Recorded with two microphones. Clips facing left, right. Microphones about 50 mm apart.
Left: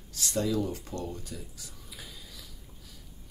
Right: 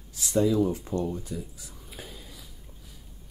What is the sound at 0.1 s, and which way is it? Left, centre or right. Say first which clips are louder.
Speech: right 6 dB; centre.